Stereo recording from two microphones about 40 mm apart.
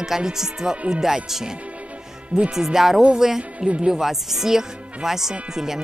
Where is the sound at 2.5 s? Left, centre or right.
Centre.